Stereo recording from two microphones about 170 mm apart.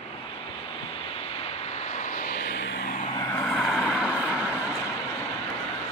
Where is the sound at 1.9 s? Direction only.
45° left (ahead or behind); by 2.9 s 65° left (ahead or behind).